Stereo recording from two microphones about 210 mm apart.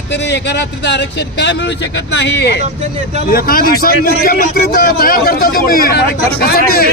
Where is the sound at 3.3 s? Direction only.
45° left (ahead or behind).